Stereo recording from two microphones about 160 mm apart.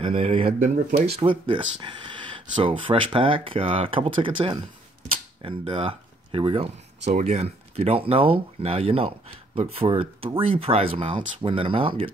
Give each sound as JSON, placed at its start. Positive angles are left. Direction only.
{"t": 0.0, "sound": "speech", "side_deg": -35}
{"t": 0.6, "sound": "speech", "side_deg": -50}
{"t": 1.1, "sound": "speech", "side_deg": -35}
{"t": 7.1, "sound": "speech", "side_deg": -45}